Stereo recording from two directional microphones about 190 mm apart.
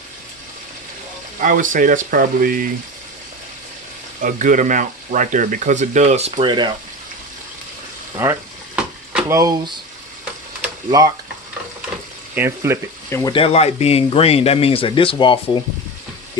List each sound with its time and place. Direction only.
1.4 s speech: 45° right (ahead or behind)
4.2 s speech: 45° right (ahead or behind); by 6.7 s 25° right (ahead or behind)
8.2 s frying: 15° right (ahead or behind)
9.3 s speech: 20° right (ahead or behind)
12.4 s speech: 15° right (ahead or behind)
13.1 s speech: 25° left (ahead or behind)